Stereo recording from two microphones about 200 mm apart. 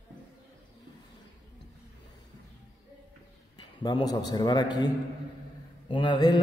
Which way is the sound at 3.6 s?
20° left (ahead or behind).